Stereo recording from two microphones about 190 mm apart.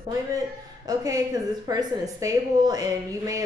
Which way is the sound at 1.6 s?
20° right (ahead or behind).